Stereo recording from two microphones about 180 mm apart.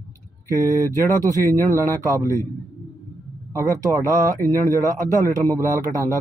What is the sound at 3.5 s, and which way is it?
A man's voice, 15° right (ahead or behind).